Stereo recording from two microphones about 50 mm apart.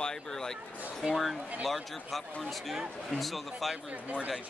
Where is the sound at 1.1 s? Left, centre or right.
Centre.